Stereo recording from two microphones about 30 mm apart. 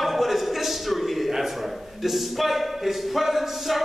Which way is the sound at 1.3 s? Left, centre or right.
Centre.